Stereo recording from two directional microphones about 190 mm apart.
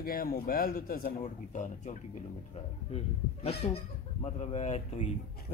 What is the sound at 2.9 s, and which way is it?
Speech, 30° left (ahead or behind).